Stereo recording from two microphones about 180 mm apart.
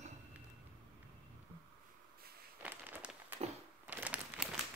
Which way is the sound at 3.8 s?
10° right (ahead or behind).